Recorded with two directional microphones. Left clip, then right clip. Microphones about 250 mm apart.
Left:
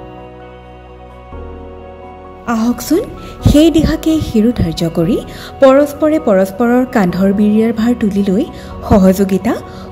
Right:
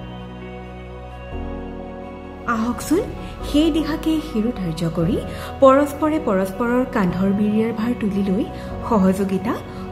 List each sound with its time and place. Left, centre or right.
2.4 s speech: centre